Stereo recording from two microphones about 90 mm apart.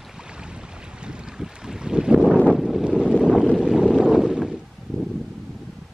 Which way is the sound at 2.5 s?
5° right (ahead or behind).